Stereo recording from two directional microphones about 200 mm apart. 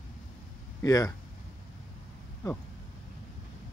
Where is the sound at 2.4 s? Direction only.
15° left (ahead or behind).